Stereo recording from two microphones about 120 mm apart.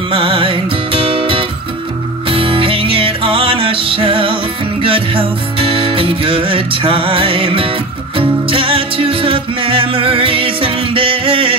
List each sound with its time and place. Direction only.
0.1 s music: 50° right (ahead or behind)